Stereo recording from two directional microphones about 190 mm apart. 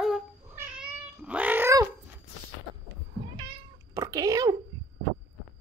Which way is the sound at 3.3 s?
25° right (ahead or behind).